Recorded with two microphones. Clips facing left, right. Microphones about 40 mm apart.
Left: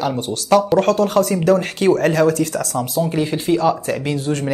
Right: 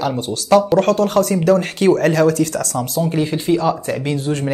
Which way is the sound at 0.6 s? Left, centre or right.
Centre.